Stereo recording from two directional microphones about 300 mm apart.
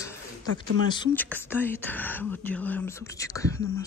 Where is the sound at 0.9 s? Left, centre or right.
Centre.